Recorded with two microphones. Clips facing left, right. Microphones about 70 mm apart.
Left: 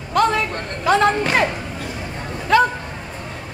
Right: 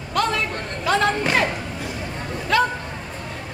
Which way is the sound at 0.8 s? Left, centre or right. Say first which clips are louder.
Left 4 dB; left.